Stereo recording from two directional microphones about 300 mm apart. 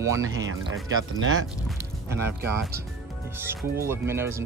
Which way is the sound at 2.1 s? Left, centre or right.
Centre.